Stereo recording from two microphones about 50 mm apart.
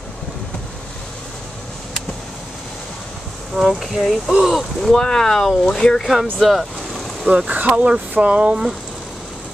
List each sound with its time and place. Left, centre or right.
3.5 s speech: centre
4.3 s speech: centre
4.6 s speech: centre
6.4 s speech: centre
7.2 s speech: right